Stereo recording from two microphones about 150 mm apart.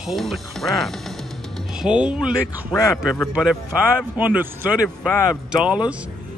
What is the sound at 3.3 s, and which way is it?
Speech, centre (ahead or behind).